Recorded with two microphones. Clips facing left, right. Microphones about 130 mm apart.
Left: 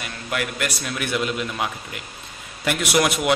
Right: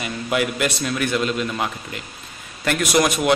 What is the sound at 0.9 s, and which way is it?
Speech, 10° left (ahead or behind).